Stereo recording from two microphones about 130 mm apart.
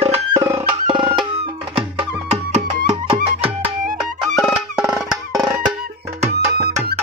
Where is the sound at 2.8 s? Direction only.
90° right.